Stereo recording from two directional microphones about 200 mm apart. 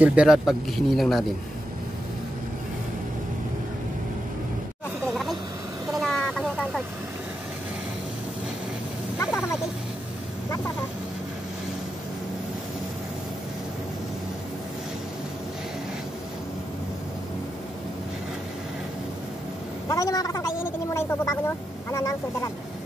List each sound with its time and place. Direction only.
0.0 s speech: 5° right (ahead or behind)
5.1 s vehicle: centre (ahead or behind)
19.9 s a sound: 15° left (ahead or behind)